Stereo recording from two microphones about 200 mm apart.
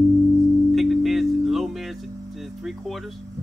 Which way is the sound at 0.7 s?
Centre (ahead or behind).